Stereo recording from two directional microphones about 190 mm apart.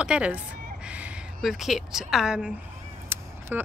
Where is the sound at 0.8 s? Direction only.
5° right (ahead or behind).